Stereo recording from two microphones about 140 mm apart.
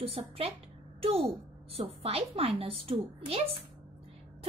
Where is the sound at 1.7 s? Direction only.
45° right (ahead or behind).